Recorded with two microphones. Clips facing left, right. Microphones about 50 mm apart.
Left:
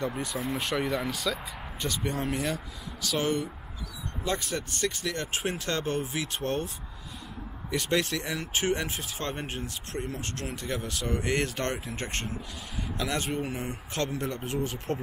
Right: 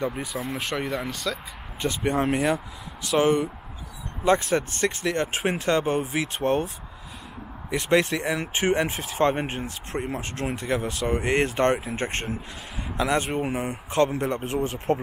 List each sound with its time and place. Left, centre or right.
0.0 s speech: centre
1.8 s speech: right
7.7 s speech: right